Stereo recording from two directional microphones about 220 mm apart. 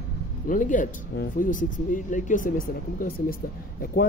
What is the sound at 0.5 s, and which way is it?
Speech, 35° left (ahead or behind).